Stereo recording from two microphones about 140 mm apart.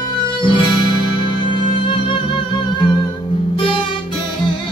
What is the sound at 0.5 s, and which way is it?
Music, 35° left (ahead or behind).